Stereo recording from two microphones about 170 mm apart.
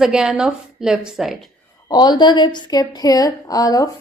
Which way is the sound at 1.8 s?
25° left (ahead or behind).